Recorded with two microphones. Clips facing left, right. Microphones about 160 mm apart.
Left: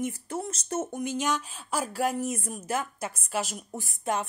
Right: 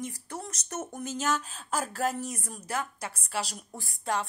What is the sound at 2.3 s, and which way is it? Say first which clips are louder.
A woman's voice: left 5 dB; 25° left (ahead or behind).